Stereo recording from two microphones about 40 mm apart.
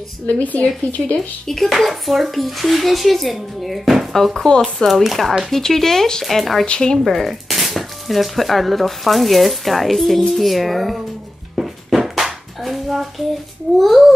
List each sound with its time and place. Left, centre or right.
0.4 s speech: left
1.0 s speech: centre
4.2 s speech: centre
6.6 s speech: centre
7.1 s speech: centre
11.5 s a sound: centre
12.6 s child singing: centre
13.7 s speech: centre